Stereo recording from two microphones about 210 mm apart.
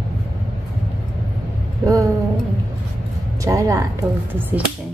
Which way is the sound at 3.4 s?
15° right (ahead or behind).